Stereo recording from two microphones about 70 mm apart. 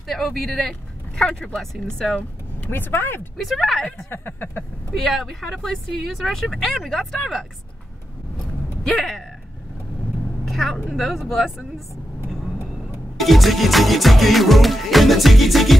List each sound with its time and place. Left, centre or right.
0.0 s speech: centre
2.7 s speech: left
3.3 s speech: centre
4.1 s a sound: left
4.9 s speech: centre
8.8 s speech: centre
10.4 s vehicle: centre
11.0 s speech: centre
13.2 s speech: centre